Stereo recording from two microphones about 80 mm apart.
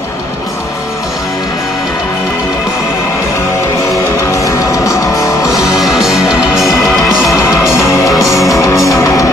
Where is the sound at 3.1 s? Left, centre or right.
Left.